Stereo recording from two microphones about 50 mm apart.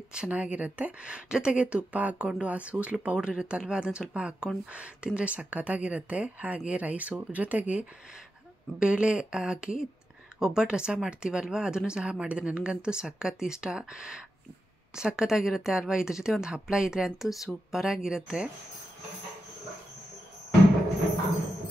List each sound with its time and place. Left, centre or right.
0.1 s speech: right
8.7 s speech: right